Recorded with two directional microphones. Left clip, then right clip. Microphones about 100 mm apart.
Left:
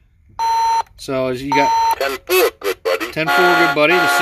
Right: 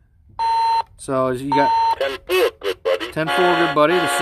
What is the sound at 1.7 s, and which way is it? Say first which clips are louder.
Beep: left 2 dB; 10° right (ahead or behind).